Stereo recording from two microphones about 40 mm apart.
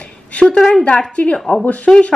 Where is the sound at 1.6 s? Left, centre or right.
Left.